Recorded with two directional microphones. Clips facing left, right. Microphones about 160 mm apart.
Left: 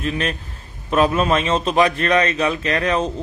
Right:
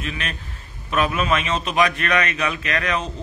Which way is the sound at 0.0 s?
40° left (ahead or behind).